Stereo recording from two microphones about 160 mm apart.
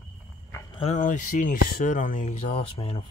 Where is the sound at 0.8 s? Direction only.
50° left (ahead or behind).